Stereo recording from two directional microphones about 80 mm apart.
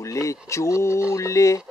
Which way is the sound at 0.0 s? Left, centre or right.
Left.